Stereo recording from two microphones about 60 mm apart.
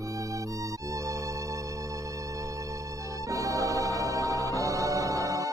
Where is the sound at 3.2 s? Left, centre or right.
Right.